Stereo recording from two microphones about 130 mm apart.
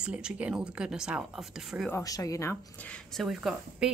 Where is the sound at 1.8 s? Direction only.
25° left (ahead or behind).